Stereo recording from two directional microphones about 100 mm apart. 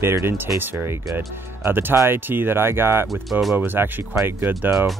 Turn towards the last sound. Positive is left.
turn(degrees=-20)  # may be behind; listen again after turning